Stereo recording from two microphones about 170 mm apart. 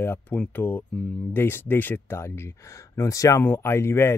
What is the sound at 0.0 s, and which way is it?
Speech, 10° left (ahead or behind).